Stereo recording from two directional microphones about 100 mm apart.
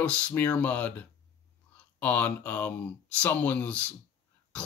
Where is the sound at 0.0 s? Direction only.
10° left (ahead or behind).